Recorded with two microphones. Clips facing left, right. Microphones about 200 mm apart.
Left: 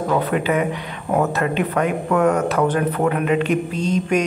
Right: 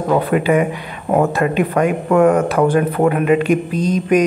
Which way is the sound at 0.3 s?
10° right (ahead or behind).